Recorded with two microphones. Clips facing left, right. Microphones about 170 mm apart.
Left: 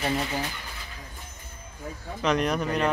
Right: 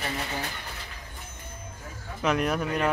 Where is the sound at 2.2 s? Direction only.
5° right (ahead or behind).